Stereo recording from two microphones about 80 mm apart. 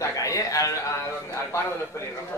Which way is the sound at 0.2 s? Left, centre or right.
Left.